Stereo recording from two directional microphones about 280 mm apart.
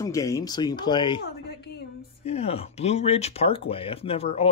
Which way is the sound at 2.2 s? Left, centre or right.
Left.